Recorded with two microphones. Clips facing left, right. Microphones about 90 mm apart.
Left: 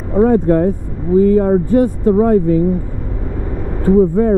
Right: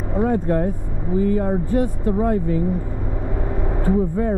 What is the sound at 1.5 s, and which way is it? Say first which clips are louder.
Speech: left 8 dB; 35° left (ahead or behind).